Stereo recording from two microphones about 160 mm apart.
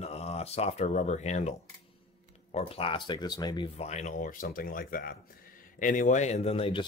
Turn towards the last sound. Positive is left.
turn(degrees=35)  # may be behind; listen again after turning